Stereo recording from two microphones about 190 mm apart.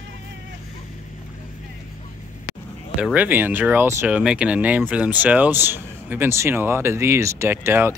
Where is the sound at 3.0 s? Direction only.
5° right (ahead or behind).